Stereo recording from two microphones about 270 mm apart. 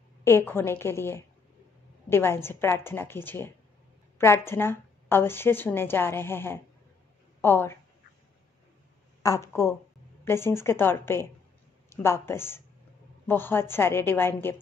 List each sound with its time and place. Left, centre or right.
0.2 s a woman's voice: centre
9.2 s a woman's voice: centre